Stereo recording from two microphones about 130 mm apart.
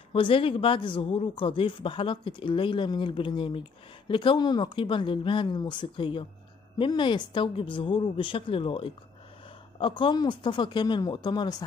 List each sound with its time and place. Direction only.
0.1 s speech: 45° left (ahead or behind)